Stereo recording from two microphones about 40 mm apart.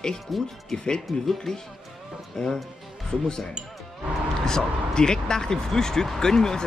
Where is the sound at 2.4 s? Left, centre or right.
Centre.